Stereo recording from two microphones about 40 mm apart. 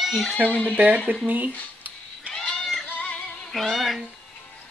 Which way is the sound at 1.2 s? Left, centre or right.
Right.